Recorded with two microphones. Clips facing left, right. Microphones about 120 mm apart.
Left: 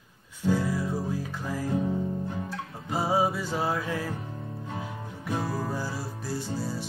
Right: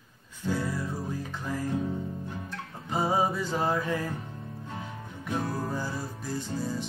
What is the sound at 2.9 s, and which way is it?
Music, 5° left (ahead or behind).